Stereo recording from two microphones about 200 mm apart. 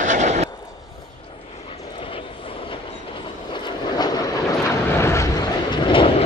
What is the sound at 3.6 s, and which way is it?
Vehicle, 20° left (ahead or behind).